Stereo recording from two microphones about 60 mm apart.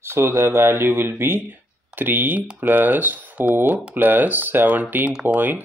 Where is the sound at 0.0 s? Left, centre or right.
Right.